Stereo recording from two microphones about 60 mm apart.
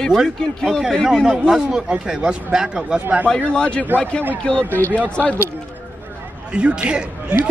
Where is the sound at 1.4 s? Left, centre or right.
Centre.